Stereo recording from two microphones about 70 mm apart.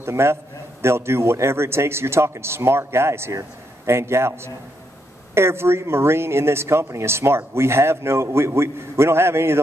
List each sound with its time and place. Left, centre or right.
0.0 s speech: right